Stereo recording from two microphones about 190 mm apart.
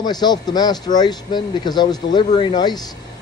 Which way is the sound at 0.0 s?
20° left (ahead or behind).